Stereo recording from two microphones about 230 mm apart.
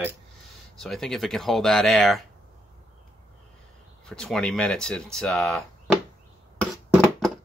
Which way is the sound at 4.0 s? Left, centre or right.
Centre.